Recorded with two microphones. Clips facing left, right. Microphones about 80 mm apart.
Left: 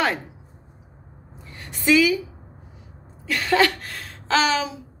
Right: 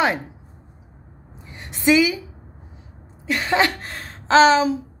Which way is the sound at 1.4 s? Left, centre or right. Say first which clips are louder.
Right 6 dB; right.